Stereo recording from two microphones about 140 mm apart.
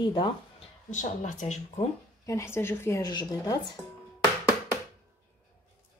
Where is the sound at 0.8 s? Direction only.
60° left (ahead or behind).